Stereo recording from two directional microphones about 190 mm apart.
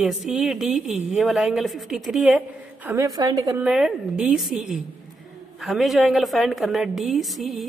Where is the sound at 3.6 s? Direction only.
5° right (ahead or behind).